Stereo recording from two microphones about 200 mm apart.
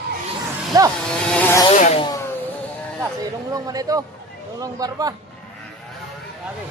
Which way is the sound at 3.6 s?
20° right (ahead or behind).